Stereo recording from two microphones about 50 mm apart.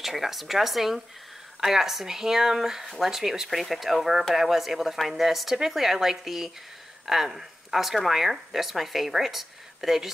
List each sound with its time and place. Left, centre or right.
0.0 s speech: centre